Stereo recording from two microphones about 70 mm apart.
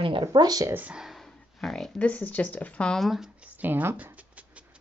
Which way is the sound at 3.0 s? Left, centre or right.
Centre.